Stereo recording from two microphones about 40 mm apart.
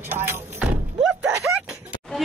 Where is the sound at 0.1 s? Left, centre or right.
Right.